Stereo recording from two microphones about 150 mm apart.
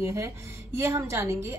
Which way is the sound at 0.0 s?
20° right (ahead or behind).